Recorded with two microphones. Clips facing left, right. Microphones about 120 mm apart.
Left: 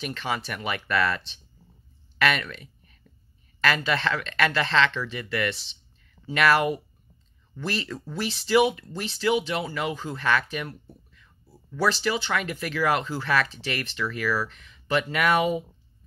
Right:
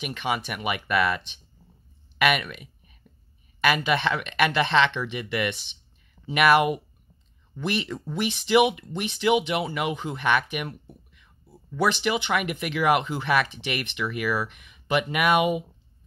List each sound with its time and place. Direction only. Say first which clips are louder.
0.0 s speech: right 2 dB; 15° right (ahead or behind)
2.1 s a sound: right 1 dB; 15° right (ahead or behind)
3.6 s speech: right 2 dB; 15° right (ahead or behind)